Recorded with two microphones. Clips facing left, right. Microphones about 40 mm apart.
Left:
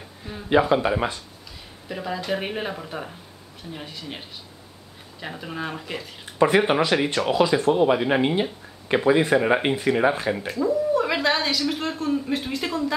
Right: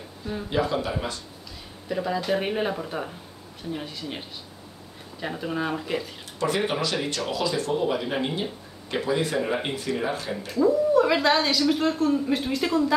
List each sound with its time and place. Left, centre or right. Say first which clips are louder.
0.2 s speech: right 5 dB; left
1.9 s a woman's voice: right 2 dB; centre
6.4 s speech: left 7 dB; left
9.7 s speech: left 7 dB; left
10.5 s a woman's voice: right 4 dB; centre